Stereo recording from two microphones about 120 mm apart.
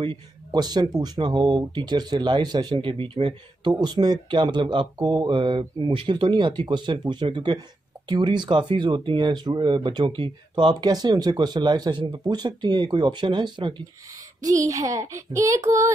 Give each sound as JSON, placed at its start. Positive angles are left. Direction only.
{"t": 0.0, "sound": "speech", "side_deg": -40}
{"t": 14.4, "sound": "child singing", "side_deg": -25}